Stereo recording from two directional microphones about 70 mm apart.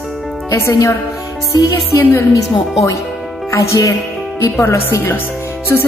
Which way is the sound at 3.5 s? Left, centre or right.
Left.